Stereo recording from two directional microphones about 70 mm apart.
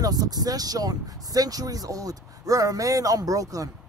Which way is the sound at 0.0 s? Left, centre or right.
Right.